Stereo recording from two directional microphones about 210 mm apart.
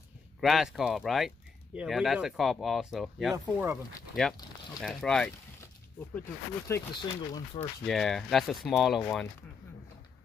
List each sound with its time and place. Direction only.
0.4 s speech: centre (ahead or behind)
6.7 s speech: 15° left (ahead or behind)
7.8 s speech: centre (ahead or behind)